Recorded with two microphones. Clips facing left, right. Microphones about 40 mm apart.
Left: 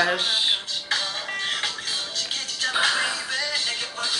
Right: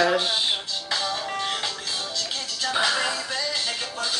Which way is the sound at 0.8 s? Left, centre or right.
Left.